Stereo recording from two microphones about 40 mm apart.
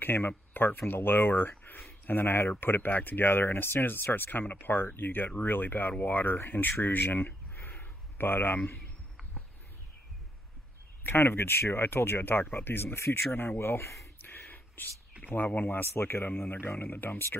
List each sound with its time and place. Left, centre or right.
0.0 s speech: left
7.8 s a sound: left
11.1 s speech: left
12.5 s speech: left
14.1 s a sound: left
15.2 s speech: left
15.8 s speech: left